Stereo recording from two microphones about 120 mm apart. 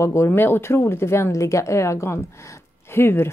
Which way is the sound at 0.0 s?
25° left (ahead or behind).